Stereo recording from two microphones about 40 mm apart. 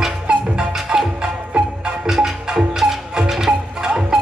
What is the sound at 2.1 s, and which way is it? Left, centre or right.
Music, centre.